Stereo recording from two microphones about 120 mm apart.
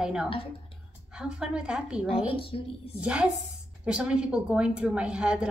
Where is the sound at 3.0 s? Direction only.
10° right (ahead or behind).